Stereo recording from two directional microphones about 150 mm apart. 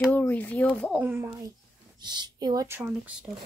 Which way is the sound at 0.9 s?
15° right (ahead or behind).